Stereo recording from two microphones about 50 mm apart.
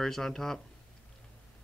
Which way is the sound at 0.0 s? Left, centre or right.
Centre.